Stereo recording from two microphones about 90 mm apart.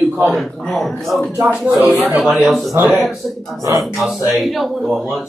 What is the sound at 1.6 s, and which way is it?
Speech, 15° right (ahead or behind).